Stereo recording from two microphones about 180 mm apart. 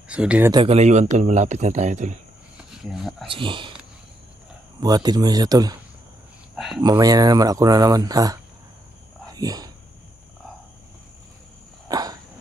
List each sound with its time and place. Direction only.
0.1 s speech: 5° right (ahead or behind)
0.5 s speech: 25° right (ahead or behind)
0.7 s speech: 40° right (ahead or behind)
2.5 s cricket: centre (ahead or behind)
3.3 s speech: 30° right (ahead or behind)
4.7 s speech: 20° right (ahead or behind)
6.5 s speech: centre (ahead or behind)
6.8 s speech: 20° right (ahead or behind)
11.9 s a sound: 20° right (ahead or behind)